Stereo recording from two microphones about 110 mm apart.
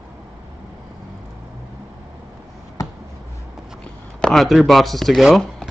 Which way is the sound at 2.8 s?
30° left (ahead or behind).